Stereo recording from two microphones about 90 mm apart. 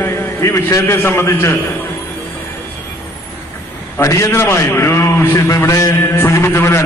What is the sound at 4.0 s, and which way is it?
A man's voice, 35° left (ahead or behind).